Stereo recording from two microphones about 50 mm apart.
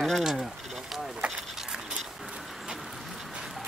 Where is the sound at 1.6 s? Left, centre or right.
Centre.